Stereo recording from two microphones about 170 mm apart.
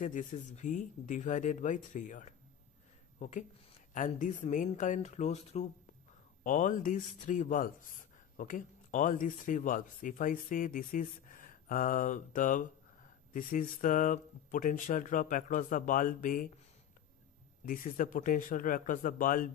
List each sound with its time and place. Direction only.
0.0 s speech: 50° left (ahead or behind)
6.4 s speech: 50° left (ahead or behind)
17.6 s speech: 55° left (ahead or behind)